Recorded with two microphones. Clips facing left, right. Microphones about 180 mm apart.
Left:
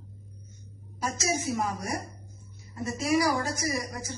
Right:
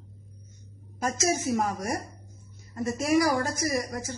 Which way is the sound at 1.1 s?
50° right (ahead or behind).